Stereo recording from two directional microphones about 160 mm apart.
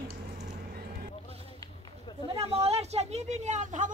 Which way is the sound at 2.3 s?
40° right (ahead or behind).